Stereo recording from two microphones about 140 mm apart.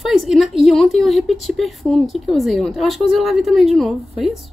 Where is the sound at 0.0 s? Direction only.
Centre (ahead or behind).